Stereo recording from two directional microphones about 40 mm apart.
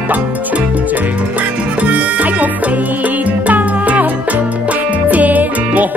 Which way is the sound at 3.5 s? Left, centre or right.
Right.